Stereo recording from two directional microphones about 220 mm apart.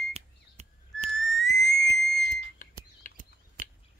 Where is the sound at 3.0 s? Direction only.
35° left (ahead or behind).